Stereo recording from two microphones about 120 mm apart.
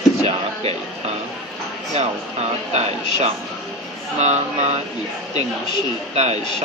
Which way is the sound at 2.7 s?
65° right (ahead or behind).